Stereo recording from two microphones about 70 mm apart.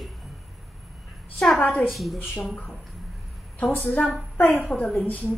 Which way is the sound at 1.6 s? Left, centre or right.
Left.